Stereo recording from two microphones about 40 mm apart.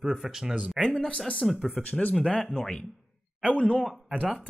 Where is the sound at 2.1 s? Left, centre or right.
Left.